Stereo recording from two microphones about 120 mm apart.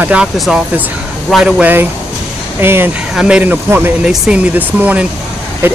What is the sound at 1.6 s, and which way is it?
Speech, 15° right (ahead or behind).